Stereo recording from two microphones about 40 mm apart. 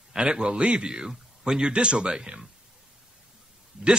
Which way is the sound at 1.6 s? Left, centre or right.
Right.